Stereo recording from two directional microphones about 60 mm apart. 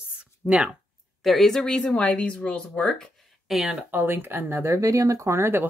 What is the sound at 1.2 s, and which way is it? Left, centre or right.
Speech, centre.